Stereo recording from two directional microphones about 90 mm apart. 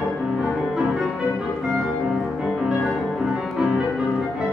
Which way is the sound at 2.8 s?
5° right (ahead or behind).